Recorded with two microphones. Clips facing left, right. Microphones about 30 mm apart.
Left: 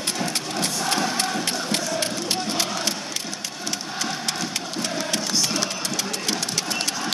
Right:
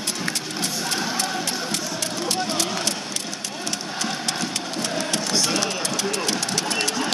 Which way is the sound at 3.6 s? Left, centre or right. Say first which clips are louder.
Even; centre.